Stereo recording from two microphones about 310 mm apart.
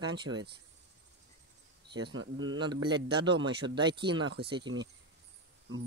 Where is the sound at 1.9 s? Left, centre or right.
Centre.